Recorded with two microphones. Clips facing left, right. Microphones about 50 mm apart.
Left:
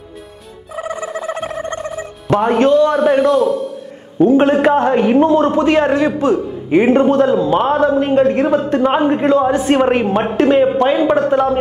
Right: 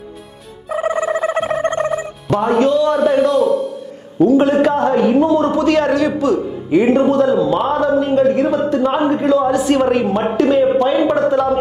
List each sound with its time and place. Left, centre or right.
0.7 s music: right
2.3 s speech: left
2.7 s a man's voice: centre
4.2 s a man's voice: left
11.0 s speech: left